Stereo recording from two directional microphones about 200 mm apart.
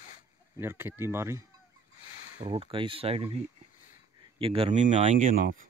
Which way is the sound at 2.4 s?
25° right (ahead or behind).